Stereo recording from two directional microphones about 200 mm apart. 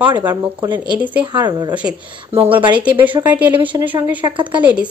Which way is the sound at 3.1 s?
10° right (ahead or behind).